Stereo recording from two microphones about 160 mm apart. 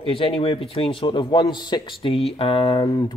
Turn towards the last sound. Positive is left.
turn(degrees=25)  # may be behind; listen again after turning